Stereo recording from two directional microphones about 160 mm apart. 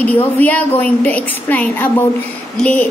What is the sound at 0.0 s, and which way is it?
A woman's voice, 10° left (ahead or behind).